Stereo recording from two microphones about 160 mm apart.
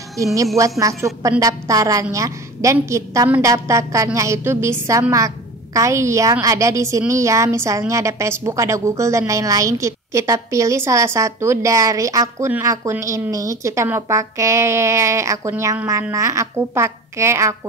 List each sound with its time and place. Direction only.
0.2 s a woman's voice: 20° right (ahead or behind)